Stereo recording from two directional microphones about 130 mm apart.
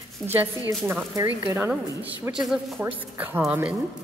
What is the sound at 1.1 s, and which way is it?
A woman's voice, 20° right (ahead or behind).